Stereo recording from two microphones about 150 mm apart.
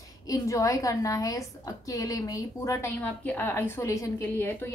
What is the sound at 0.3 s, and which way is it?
A woman's voice, 20° left (ahead or behind).